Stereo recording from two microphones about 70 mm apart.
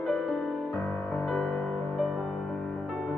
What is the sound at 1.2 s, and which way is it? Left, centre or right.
Music, centre.